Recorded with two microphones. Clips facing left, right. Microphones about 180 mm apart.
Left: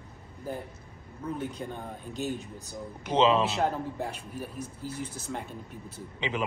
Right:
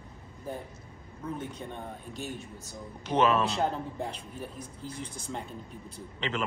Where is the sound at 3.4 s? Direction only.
Centre (ahead or behind).